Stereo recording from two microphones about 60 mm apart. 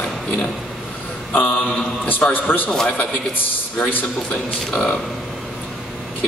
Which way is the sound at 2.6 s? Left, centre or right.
Centre.